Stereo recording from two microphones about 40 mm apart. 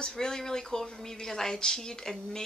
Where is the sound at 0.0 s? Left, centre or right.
Centre.